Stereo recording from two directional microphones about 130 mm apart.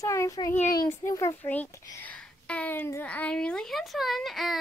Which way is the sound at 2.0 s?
10° left (ahead or behind).